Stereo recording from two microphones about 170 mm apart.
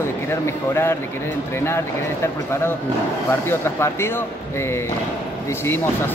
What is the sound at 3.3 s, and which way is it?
Speech, 15° left (ahead or behind).